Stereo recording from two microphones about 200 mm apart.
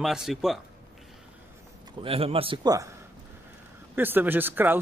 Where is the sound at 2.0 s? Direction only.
30° right (ahead or behind).